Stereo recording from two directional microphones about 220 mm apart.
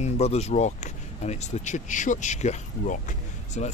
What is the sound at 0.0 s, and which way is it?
Speech, 30° left (ahead or behind).